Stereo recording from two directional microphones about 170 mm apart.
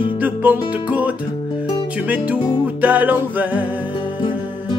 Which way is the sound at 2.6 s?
10° right (ahead or behind).